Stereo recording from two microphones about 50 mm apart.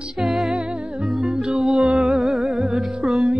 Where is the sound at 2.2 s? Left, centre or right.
Centre.